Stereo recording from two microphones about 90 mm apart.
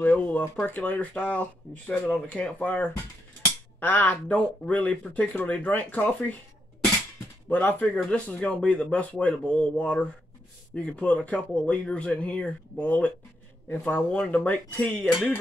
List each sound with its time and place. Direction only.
0.0 s speech: 20° left (ahead or behind)
7.4 s speech: 20° left (ahead or behind)